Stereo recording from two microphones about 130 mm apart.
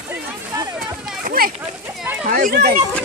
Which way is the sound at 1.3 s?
90° right.